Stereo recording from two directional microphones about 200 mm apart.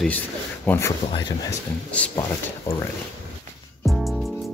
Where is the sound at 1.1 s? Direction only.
20° left (ahead or behind).